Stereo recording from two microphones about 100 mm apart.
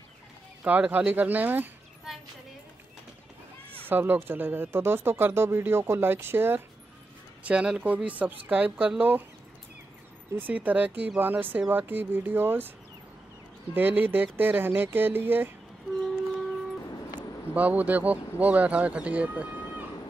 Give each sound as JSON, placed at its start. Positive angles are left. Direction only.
{"t": 0.7, "sound": "speech", "side_deg": -15}
{"t": 3.8, "sound": "speech", "side_deg": -20}
{"t": 7.4, "sound": "speech", "side_deg": -10}
{"t": 10.3, "sound": "speech", "side_deg": -15}
{"t": 13.7, "sound": "speech", "side_deg": -20}
{"t": 17.1, "sound": "speech", "side_deg": -15}